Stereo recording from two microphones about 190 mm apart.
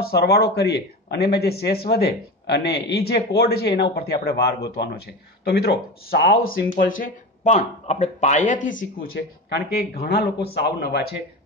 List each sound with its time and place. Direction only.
0.0 s a man's voice: 55° left (ahead or behind)
9.1 s a man's voice: 55° left (ahead or behind)